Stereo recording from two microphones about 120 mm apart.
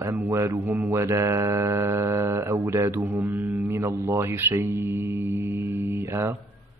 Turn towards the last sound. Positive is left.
turn(degrees=-20)  # may be behind; listen again after turning